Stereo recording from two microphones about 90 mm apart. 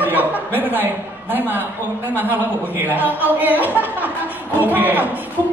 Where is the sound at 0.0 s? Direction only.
20° right (ahead or behind).